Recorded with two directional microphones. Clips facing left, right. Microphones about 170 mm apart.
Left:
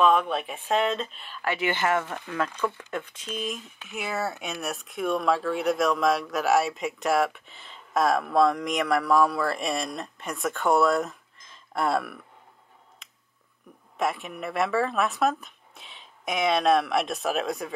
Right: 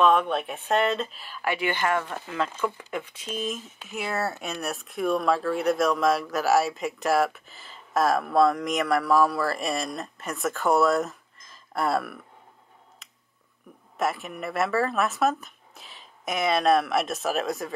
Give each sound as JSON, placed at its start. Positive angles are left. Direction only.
{"t": 0.0, "sound": "speech", "side_deg": 0}
{"t": 1.7, "sound": "speech", "side_deg": 20}
{"t": 2.5, "sound": "speech", "side_deg": -10}
{"t": 13.0, "sound": "a sound", "side_deg": 0}
{"t": 13.9, "sound": "speech", "side_deg": 0}